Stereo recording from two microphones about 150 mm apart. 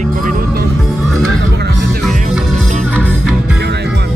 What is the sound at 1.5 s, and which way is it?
Music, 90° right.